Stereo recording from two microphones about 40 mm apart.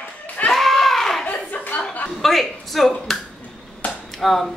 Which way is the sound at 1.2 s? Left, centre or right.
Left.